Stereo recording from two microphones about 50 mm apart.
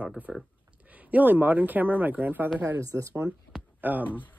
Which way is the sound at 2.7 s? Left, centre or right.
Right.